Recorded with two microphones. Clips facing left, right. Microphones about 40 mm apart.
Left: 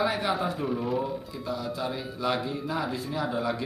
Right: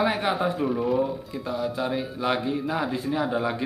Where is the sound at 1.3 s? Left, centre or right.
Right.